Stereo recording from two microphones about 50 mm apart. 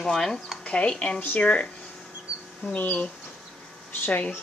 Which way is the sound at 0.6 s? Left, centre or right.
Left.